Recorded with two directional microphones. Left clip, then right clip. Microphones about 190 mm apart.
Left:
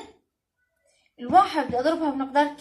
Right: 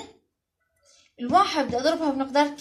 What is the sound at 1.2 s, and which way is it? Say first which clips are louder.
A woman's voice: left 2 dB; 40° right (ahead or behind).